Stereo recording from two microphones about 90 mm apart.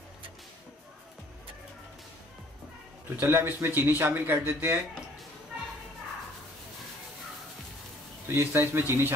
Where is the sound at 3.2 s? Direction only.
25° right (ahead or behind).